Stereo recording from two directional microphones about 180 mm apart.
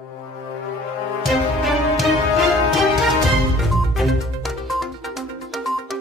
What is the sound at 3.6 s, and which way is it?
Music, centre (ahead or behind).